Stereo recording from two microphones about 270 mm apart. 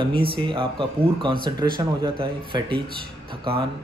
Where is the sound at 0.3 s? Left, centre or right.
Centre.